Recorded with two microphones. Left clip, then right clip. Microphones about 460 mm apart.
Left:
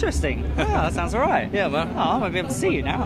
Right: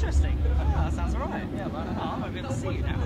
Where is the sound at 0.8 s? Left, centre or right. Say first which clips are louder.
Left 10 dB; left.